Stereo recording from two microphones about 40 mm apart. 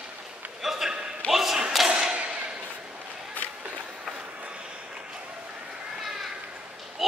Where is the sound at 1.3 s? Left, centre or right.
Centre.